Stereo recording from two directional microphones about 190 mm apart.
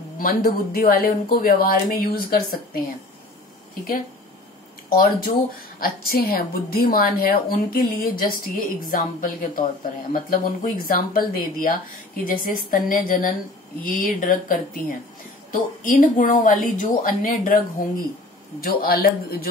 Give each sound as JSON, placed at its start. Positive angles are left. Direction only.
{"t": 0.2, "sound": "a woman's voice", "side_deg": 50}
{"t": 4.8, "sound": "a woman's voice", "side_deg": 50}
{"t": 18.6, "sound": "a woman's voice", "side_deg": 50}